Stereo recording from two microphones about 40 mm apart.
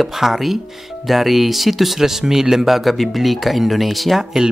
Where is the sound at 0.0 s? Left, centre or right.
Centre.